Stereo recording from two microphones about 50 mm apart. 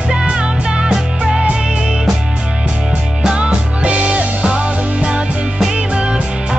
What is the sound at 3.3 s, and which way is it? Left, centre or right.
Music, right.